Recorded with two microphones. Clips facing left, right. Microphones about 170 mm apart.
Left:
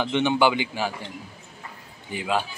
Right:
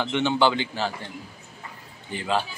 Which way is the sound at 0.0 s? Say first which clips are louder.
Left 1 dB; 15° left (ahead or behind).